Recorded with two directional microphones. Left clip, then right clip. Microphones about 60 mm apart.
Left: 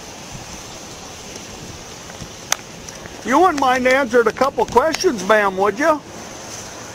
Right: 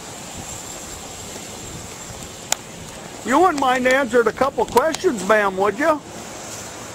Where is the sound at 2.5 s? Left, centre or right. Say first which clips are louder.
Left 3 dB; left.